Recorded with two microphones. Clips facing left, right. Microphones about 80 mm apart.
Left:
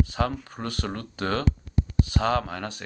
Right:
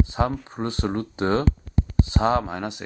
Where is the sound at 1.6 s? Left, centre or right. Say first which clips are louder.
Right 2 dB; right.